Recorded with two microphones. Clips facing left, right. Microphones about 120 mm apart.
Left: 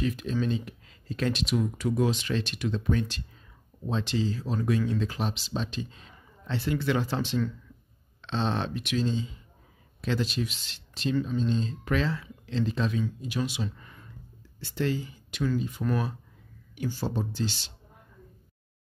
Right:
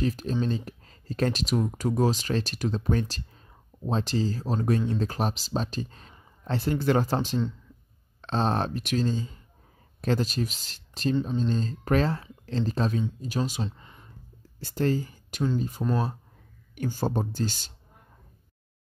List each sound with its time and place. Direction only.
0.0 s speech: 35° right (ahead or behind)
13.7 s a sound: 25° right (ahead or behind)
14.4 s speech: 40° right (ahead or behind)
15.8 s speech: 20° right (ahead or behind)
16.7 s speech: 50° right (ahead or behind)